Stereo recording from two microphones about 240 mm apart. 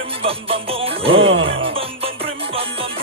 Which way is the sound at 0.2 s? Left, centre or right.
Right.